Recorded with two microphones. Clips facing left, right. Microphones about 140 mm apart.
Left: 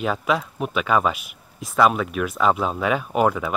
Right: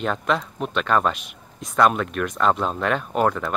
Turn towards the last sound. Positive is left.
turn(degrees=5)  # may be behind; listen again after turning